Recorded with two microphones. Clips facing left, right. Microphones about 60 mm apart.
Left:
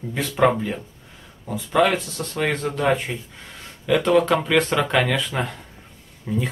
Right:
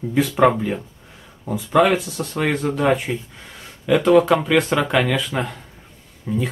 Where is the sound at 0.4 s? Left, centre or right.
Centre.